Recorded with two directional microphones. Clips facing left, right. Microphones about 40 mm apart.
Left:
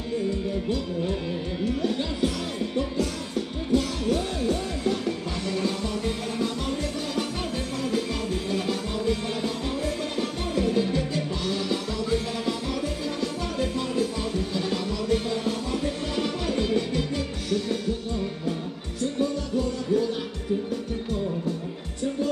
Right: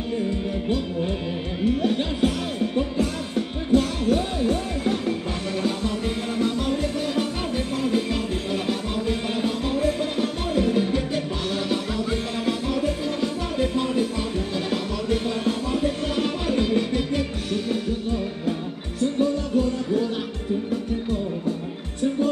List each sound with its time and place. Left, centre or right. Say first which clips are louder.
1.8 s speech: right 4 dB; right
3.7 s music: right 4 dB; right
7.2 s music: right 4 dB; right
14.7 s music: right 1 dB; right